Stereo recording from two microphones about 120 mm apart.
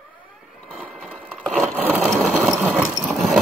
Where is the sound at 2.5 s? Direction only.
10° right (ahead or behind).